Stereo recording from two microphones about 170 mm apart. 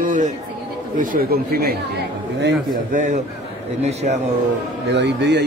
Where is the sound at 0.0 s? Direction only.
50° right (ahead or behind).